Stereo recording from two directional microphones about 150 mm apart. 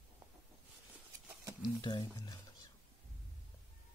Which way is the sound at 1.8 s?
30° left (ahead or behind).